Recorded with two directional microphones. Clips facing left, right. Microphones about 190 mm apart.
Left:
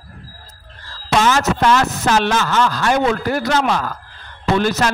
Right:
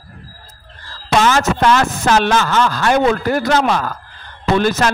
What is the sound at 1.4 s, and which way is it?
A man's voice, 50° right (ahead or behind).